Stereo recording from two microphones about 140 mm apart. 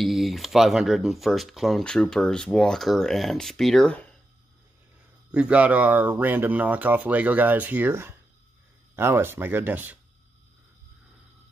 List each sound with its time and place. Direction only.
0.0 s speech: centre (ahead or behind)
5.3 s speech: 10° right (ahead or behind)